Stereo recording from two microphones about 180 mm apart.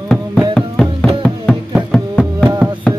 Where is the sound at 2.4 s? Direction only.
10° right (ahead or behind).